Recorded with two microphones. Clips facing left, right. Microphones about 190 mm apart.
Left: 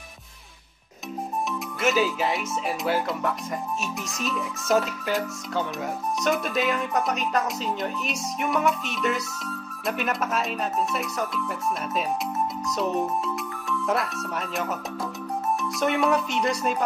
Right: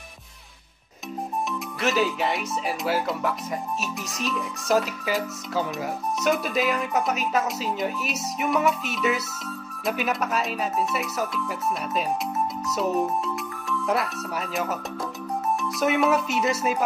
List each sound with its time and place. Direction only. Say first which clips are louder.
1.8 s speech: left 1 dB; centre (ahead or behind)
12.6 s speech: right 2 dB; 5° right (ahead or behind)